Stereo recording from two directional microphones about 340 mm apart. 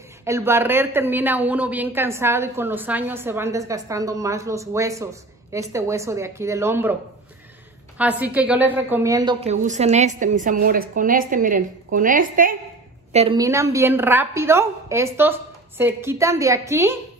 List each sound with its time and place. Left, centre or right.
0.2 s a woman's voice: centre
8.0 s a woman's voice: centre